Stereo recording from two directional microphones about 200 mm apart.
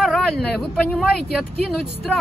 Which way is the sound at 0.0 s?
Centre (ahead or behind).